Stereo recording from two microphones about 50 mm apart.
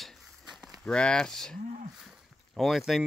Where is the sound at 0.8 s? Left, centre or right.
Centre.